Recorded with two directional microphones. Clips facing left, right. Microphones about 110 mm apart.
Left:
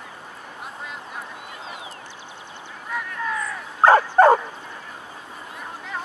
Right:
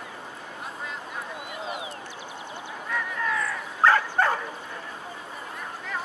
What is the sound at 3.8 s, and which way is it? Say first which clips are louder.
Bow-wow: left 7 dB; 40° left (ahead or behind).